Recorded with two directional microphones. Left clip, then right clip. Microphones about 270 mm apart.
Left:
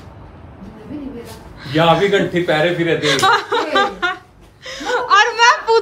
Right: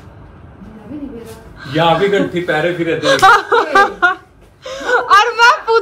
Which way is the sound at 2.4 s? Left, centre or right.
Left.